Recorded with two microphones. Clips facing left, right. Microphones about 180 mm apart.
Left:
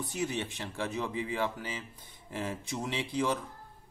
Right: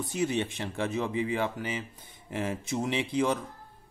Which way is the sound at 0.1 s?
20° right (ahead or behind).